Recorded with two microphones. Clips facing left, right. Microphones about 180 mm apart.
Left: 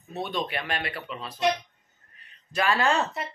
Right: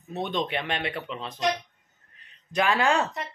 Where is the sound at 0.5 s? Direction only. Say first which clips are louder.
Right 2 dB; 20° right (ahead or behind).